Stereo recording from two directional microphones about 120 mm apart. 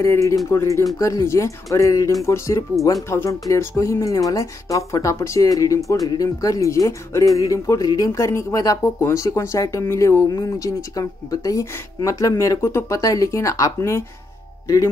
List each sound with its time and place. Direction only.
0.0 s speech: 25° left (ahead or behind)